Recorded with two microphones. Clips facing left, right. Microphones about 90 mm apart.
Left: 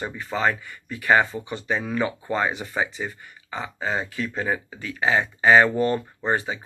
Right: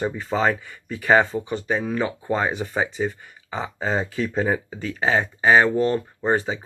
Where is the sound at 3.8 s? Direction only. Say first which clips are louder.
Right 3 dB; 40° right (ahead or behind).